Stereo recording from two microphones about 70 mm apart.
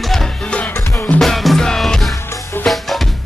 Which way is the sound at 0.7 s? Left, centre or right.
Left.